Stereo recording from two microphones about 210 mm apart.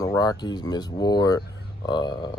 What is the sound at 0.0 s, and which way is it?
Speech, 15° left (ahead or behind).